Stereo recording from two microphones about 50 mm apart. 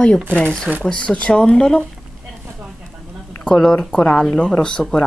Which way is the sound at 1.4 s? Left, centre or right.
Centre.